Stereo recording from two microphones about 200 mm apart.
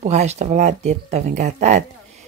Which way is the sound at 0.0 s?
35° right (ahead or behind).